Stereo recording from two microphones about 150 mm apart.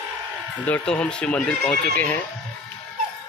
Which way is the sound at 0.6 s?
10° left (ahead or behind).